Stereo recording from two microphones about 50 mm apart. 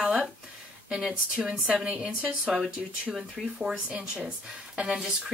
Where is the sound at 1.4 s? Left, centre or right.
Centre.